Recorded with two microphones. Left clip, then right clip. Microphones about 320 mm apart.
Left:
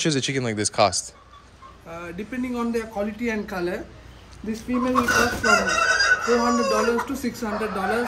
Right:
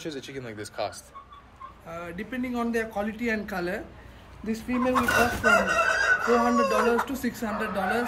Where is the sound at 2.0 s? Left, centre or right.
Centre.